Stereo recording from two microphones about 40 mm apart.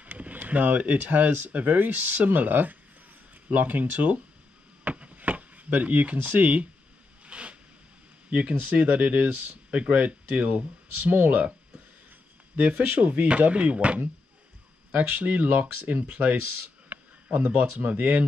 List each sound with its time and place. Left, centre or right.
0.0 s speech: right
4.8 s a sound: right
6.2 s speech: right
7.2 s zipper: right
8.3 s speech: right
11.0 s speech: right
12.5 s speech: right